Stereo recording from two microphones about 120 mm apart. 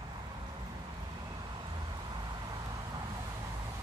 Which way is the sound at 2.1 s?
35° right (ahead or behind).